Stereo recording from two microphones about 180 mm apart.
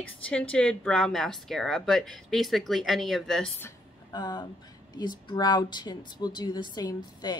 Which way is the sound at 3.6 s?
20° left (ahead or behind).